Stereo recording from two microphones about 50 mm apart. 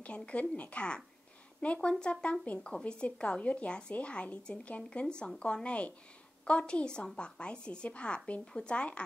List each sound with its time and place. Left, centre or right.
0.0 s a woman's voice: left